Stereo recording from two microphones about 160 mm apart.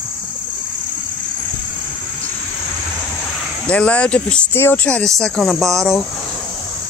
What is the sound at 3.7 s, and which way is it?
Speech, 10° left (ahead or behind).